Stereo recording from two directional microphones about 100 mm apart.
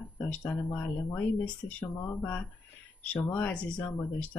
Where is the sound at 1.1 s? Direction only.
15° left (ahead or behind).